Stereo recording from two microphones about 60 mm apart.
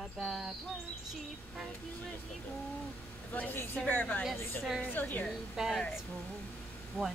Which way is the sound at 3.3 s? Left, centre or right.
Left.